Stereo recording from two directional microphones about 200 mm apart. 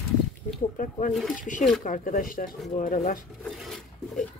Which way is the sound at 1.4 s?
40° left (ahead or behind).